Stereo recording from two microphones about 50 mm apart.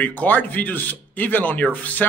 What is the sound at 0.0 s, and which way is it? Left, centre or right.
Speech, left.